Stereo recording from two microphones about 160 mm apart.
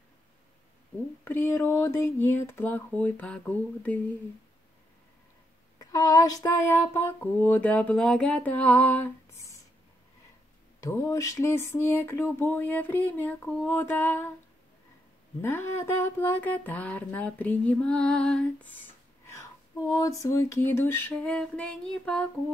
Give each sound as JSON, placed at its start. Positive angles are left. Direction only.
{"t": 1.2, "sound": "speech", "side_deg": 15}
{"t": 5.8, "sound": "speech", "side_deg": 25}
{"t": 10.8, "sound": "speech", "side_deg": 20}
{"t": 15.4, "sound": "speech", "side_deg": 15}
{"t": 19.9, "sound": "a sound", "side_deg": 20}